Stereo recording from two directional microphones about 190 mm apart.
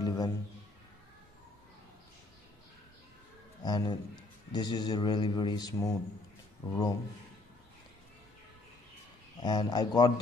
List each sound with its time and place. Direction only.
0.0 s a sound: 20° left (ahead or behind)
3.6 s a man's voice: 20° left (ahead or behind)
9.4 s a man's voice: 20° left (ahead or behind)